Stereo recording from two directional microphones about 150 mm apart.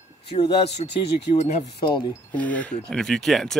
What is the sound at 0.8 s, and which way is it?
Speech, 45° left (ahead or behind).